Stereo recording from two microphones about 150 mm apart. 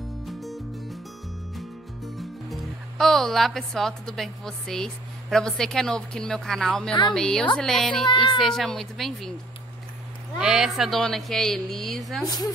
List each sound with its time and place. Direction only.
0.3 s music: centre (ahead or behind)
2.1 s speech: centre (ahead or behind)
8.1 s speech: 30° left (ahead or behind)
8.4 s speech: centre (ahead or behind)
10.3 s speech: 5° right (ahead or behind)